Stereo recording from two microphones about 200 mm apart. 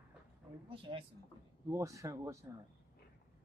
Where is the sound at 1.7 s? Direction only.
15° right (ahead or behind).